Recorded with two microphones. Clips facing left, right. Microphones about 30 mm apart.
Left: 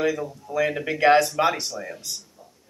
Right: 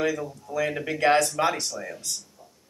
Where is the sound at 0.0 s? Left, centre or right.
Centre.